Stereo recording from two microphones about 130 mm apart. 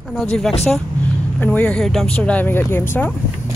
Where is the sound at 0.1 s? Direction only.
5° left (ahead or behind).